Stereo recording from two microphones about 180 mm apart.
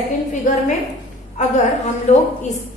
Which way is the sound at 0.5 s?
50° left (ahead or behind).